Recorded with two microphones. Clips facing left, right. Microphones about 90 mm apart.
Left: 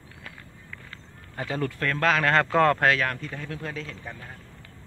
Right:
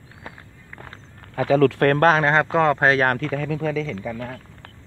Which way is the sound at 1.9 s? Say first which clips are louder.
Right 3 dB; 45° right (ahead or behind).